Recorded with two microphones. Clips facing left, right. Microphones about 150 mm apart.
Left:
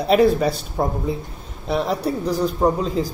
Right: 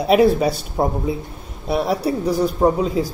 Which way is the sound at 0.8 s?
20° right (ahead or behind).